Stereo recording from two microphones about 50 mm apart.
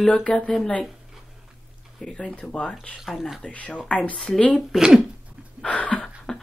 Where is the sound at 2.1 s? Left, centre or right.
Left.